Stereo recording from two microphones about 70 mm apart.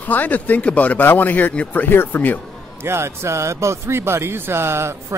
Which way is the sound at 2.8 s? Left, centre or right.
Right.